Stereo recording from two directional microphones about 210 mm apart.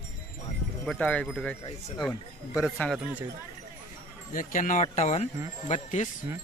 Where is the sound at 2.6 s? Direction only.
Centre (ahead or behind).